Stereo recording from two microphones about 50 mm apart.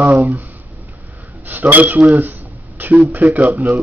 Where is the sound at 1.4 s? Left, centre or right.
Right.